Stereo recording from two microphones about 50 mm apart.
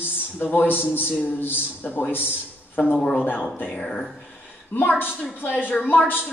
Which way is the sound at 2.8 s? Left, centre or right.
Left.